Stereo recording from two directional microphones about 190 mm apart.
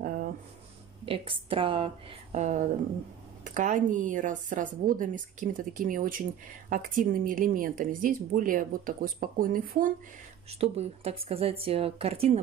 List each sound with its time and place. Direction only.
0.0 s a sound: 50° right (ahead or behind)
1.0 s speech: 30° right (ahead or behind); by 9.8 s 45° right (ahead or behind)
10.5 s speech: 35° right (ahead or behind)